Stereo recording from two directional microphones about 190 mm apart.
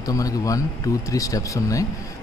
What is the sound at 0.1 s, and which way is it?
A man's voice, 20° left (ahead or behind).